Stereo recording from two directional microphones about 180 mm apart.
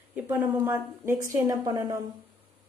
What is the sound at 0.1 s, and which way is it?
A woman's voice, 10° right (ahead or behind).